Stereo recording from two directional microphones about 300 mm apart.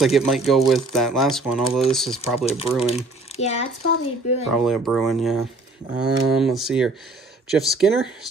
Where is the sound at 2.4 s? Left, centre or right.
Centre.